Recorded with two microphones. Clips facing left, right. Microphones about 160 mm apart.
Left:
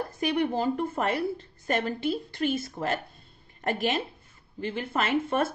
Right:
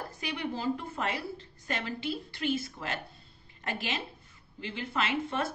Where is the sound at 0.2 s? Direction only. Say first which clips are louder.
Left 8 dB; 50° left (ahead or behind).